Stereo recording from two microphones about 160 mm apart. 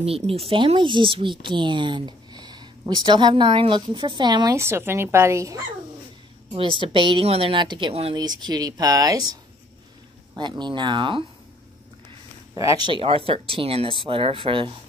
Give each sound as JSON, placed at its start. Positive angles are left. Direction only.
{"t": 0.0, "sound": "speech", "side_deg": -35}
{"t": 6.5, "sound": "speech", "side_deg": -30}
{"t": 12.5, "sound": "speech", "side_deg": -25}